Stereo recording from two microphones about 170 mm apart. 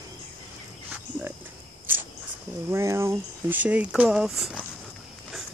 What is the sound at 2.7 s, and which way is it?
Speech, 15° right (ahead or behind).